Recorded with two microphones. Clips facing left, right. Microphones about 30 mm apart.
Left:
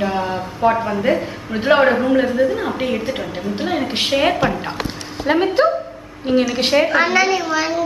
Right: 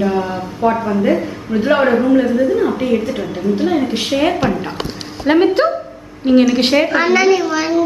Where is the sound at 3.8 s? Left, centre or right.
Left.